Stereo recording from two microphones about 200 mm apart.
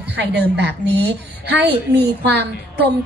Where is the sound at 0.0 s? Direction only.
60° right (ahead or behind).